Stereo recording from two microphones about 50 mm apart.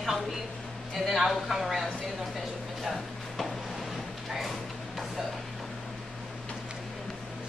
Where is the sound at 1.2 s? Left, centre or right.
Centre.